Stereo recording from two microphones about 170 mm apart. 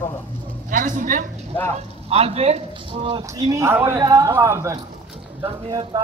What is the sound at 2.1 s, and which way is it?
A man's voice, 35° right (ahead or behind).